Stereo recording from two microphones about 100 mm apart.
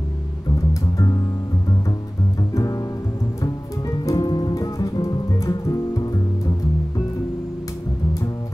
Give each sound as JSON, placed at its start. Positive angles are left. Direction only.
{"t": 2.5, "sound": "music", "side_deg": 35}
{"t": 4.0, "sound": "music", "side_deg": 35}